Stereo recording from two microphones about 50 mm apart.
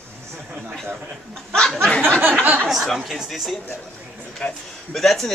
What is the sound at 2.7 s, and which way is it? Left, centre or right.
Speech, centre.